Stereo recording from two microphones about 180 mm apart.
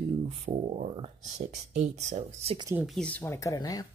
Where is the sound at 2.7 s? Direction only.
Centre (ahead or behind); by 3.8 s 20° left (ahead or behind).